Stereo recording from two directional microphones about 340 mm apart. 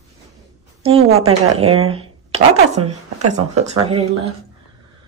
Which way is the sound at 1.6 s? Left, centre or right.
Centre.